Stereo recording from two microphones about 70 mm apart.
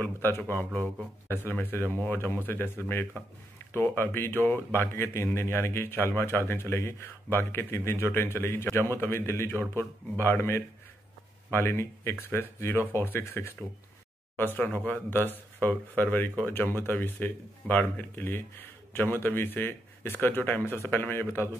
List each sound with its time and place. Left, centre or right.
0.0 s a man's voice: left
3.7 s a man's voice: left